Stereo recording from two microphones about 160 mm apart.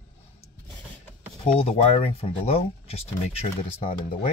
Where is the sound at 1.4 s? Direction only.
40° left (ahead or behind).